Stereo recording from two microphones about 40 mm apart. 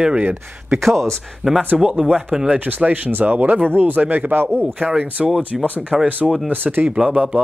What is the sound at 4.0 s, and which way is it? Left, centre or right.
Speech, right.